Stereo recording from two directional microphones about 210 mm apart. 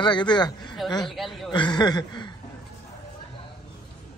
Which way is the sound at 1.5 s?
20° left (ahead or behind).